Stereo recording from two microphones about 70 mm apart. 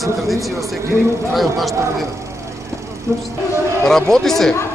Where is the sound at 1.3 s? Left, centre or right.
Centre.